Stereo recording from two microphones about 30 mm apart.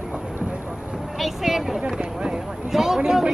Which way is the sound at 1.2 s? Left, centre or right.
Centre.